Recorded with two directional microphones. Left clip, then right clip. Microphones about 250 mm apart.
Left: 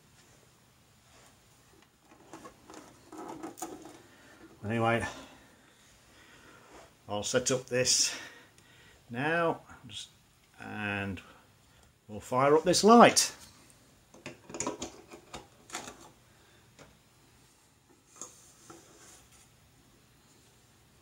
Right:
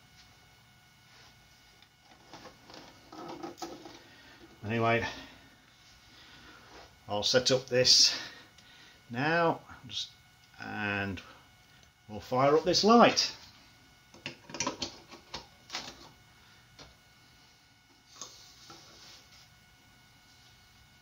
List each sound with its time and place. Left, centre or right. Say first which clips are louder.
4.6 s speech: right 1 dB; left
7.1 s speech: right 3 dB; centre; by 13.3 s left
14.2 s tick-tock: right 2 dB; centre